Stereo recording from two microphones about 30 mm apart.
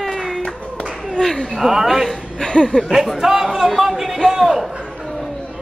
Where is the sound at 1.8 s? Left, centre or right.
Centre.